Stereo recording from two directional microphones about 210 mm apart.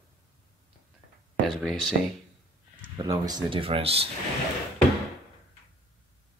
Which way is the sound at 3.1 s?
20° right (ahead or behind).